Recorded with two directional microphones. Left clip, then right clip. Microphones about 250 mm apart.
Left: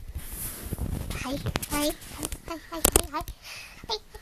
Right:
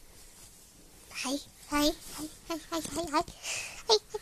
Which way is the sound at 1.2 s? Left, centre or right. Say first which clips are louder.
Left 3 dB; centre.